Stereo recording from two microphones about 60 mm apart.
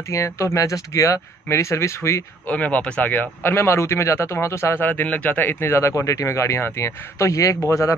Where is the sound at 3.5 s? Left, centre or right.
Left.